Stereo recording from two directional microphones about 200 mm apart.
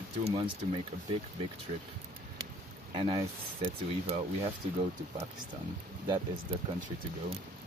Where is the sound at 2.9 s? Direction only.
25° right (ahead or behind).